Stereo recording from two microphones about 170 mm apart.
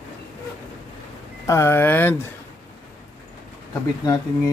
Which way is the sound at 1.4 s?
15° left (ahead or behind).